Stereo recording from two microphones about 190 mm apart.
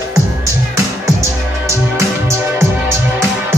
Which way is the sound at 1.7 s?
15° right (ahead or behind).